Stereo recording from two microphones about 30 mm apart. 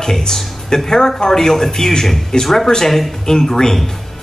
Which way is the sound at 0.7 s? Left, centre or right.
Centre.